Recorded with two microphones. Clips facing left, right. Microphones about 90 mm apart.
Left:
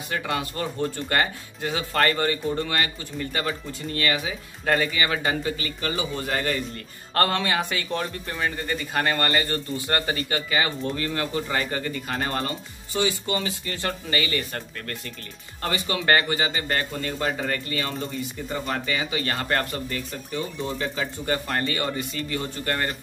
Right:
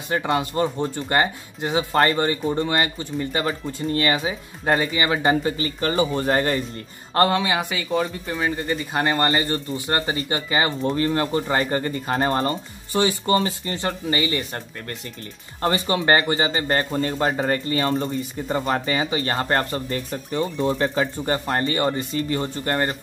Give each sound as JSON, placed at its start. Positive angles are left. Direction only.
{"t": 0.1, "sound": "speech", "side_deg": -25}
{"t": 7.2, "sound": "speech", "side_deg": -15}
{"t": 13.7, "sound": "speech", "side_deg": -25}